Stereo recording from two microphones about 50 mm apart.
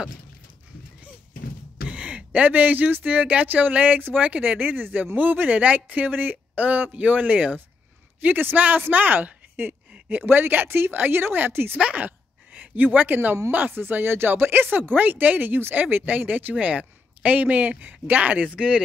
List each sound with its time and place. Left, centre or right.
1.9 s speech: right
8.8 s a sound: right
10.2 s speech: right
11.8 s speech: right